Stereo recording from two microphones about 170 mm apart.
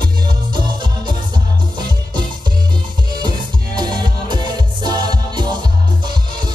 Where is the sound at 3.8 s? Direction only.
25° right (ahead or behind).